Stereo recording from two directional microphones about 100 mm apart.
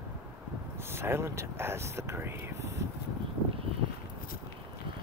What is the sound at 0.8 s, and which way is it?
Speech, 25° right (ahead or behind).